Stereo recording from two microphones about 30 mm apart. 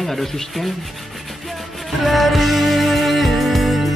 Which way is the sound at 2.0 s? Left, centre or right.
Centre.